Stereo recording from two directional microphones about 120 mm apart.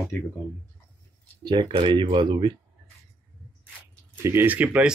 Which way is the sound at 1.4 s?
40° right (ahead or behind).